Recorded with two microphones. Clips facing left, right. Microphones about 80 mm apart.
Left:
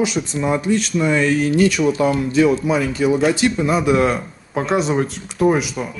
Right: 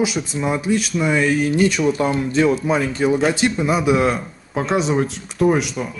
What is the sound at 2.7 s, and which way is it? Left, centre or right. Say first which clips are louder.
Speech: left 1 dB; right.